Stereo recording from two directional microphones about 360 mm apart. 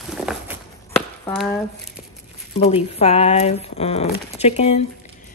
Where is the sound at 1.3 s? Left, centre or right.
Centre.